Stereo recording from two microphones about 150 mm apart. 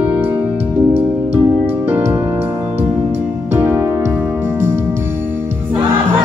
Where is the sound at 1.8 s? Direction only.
10° right (ahead or behind).